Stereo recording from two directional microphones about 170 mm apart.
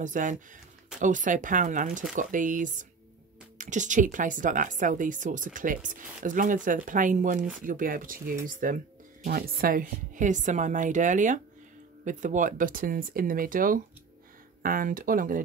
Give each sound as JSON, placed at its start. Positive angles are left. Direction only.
{"t": 0.0, "sound": "speech", "side_deg": -50}